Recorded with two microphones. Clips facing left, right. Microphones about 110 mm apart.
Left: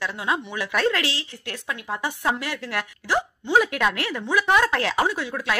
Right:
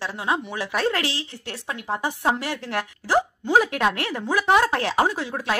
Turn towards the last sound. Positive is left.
turn(degrees=-35)  # may be behind; listen again after turning